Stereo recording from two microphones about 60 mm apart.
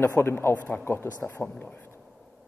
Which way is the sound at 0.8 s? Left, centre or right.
Left.